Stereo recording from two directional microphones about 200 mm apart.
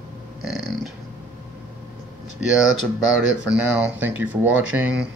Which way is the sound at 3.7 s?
10° right (ahead or behind).